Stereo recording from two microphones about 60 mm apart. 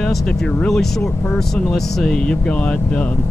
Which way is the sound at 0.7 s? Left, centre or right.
Centre.